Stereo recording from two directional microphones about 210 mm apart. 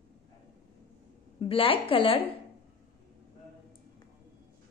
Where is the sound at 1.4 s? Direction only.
25° left (ahead or behind).